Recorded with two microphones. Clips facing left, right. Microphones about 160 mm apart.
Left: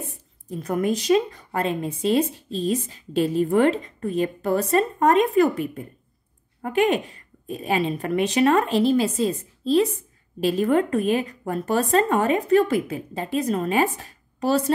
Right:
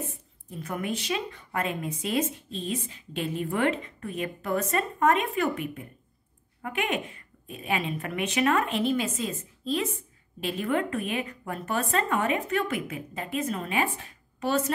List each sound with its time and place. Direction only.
0.5 s a woman's voice: 40° left (ahead or behind)